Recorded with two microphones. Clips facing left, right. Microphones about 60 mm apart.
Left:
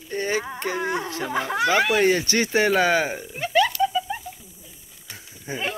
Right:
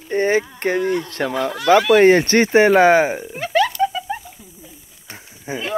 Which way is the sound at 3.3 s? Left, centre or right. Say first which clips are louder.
Right 1 dB; right.